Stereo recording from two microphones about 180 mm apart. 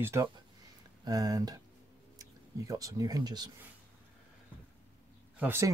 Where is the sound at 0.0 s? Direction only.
15° right (ahead or behind).